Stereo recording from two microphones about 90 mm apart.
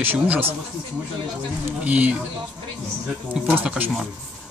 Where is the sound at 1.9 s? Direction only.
15° right (ahead or behind).